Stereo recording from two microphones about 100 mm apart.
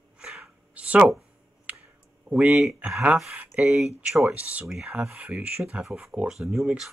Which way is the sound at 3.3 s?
15° right (ahead or behind).